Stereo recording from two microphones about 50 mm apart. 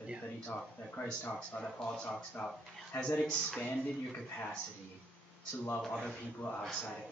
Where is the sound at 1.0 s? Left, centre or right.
Left.